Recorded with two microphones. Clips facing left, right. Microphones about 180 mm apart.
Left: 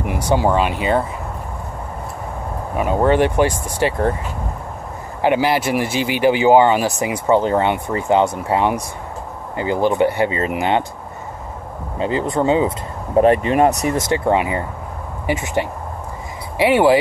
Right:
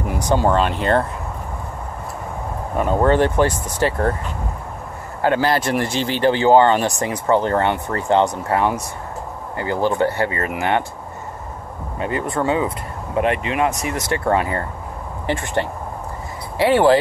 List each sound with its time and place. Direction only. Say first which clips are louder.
0.1 s speech: left 1 dB; 10° left (ahead or behind)
2.7 s speech: left 1 dB; 10° left (ahead or behind)
5.2 s speech: left 1 dB; 15° left (ahead or behind)
12.0 s speech: left 3 dB; 25° left (ahead or behind)
13.1 s speech: left 6 dB; 35° left (ahead or behind)
13.9 s speech: left 2 dB; 20° left (ahead or behind)